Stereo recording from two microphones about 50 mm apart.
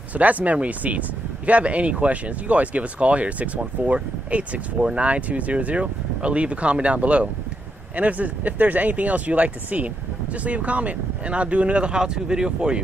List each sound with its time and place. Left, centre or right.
0.1 s speech: right